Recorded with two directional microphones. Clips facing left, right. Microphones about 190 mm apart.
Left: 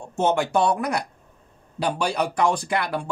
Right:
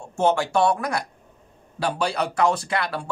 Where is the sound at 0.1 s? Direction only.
20° left (ahead or behind).